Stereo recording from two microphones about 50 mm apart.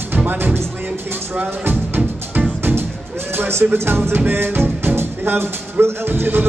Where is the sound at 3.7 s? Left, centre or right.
Right.